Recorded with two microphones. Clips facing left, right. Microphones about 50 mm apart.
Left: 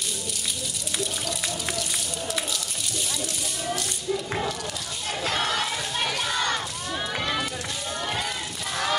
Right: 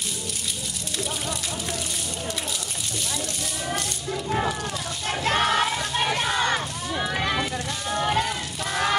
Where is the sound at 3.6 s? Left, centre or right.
Right.